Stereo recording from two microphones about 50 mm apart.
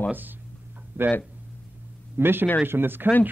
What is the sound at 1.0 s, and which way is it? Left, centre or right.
Speech, right.